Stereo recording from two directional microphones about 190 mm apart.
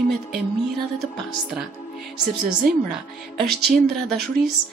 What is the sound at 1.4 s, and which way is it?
Speech, centre (ahead or behind).